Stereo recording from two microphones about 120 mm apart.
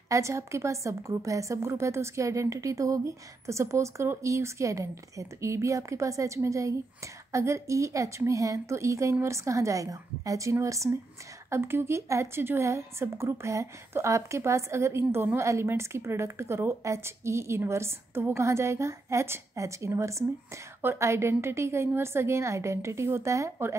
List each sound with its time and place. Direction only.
0.1 s a woman's voice: 25° right (ahead or behind)